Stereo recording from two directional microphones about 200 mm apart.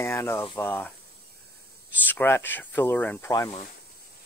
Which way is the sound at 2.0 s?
10° left (ahead or behind).